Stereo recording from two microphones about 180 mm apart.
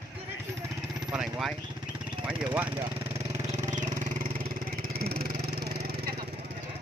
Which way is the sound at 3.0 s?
35° right (ahead or behind).